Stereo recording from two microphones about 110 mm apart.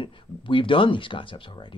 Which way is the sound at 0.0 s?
50° left (ahead or behind).